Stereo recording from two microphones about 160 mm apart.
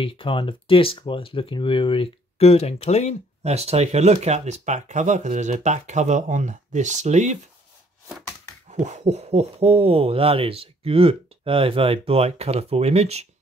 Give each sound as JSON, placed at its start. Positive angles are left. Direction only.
{"t": 0.0, "sound": "speech", "side_deg": 35}
{"t": 3.4, "sound": "speech", "side_deg": -40}
{"t": 8.6, "sound": "hoot", "side_deg": -50}